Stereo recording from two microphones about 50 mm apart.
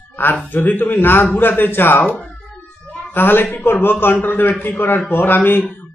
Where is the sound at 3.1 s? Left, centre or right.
Left.